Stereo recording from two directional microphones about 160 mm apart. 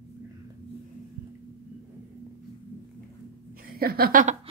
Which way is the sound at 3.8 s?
70° right (ahead or behind).